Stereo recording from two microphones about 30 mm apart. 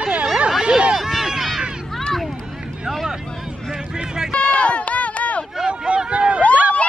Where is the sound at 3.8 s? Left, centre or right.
Right.